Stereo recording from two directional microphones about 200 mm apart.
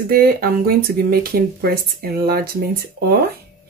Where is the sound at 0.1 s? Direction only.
50° right (ahead or behind).